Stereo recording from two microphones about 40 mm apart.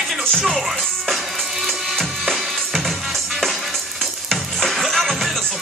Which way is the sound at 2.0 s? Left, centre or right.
Centre.